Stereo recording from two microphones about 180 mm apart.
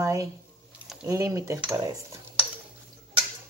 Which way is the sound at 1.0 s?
15° right (ahead or behind).